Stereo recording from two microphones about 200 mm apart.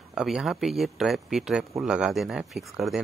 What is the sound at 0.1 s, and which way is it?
Speech, centre (ahead or behind).